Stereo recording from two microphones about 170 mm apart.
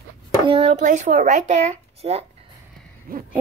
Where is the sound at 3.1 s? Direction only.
60° right (ahead or behind).